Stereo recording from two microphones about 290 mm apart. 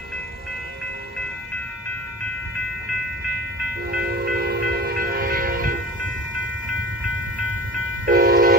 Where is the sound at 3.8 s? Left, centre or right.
Right.